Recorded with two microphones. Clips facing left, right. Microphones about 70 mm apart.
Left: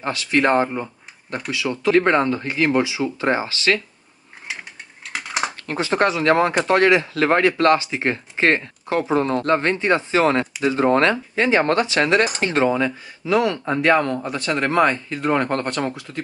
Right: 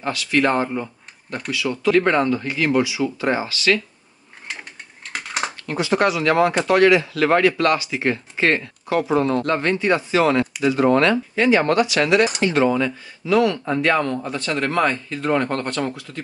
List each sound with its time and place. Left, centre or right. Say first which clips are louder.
0.0 s speech: even; left
5.0 s a sound: left 1 dB; centre
5.7 s speech: right 1 dB; left